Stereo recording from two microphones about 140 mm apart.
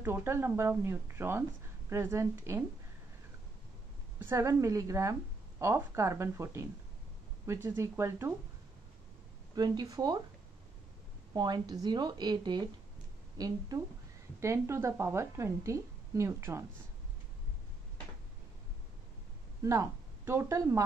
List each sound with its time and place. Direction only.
0.0 s a woman's voice: 15° right (ahead or behind)
4.2 s a woman's voice: 20° right (ahead or behind)
9.6 s a woman's voice: 30° right (ahead or behind)
11.3 s a woman's voice: 30° right (ahead or behind)
19.6 s speech: 20° right (ahead or behind)